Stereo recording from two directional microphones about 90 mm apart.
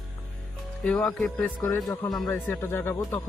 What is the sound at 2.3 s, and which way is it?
Speech, 25° left (ahead or behind).